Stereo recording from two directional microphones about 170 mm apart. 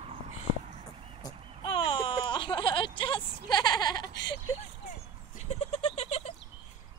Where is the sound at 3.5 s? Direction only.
25° left (ahead or behind).